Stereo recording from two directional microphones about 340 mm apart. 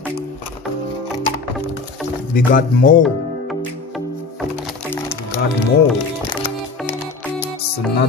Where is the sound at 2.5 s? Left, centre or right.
Left.